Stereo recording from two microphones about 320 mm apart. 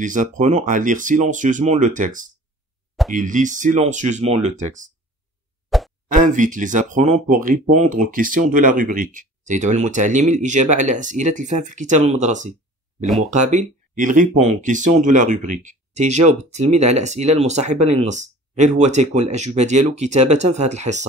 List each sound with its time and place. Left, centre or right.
0.0 s speech: right
5.7 s plop: centre
6.0 s speech: right
13.0 s speech: centre
13.3 s speech: right